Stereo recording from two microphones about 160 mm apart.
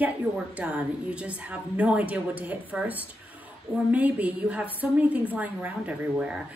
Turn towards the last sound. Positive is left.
turn(degrees=-5)  # may be behind; listen again after turning